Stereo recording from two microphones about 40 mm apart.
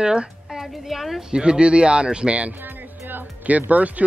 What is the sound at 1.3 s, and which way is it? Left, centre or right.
Speech, right.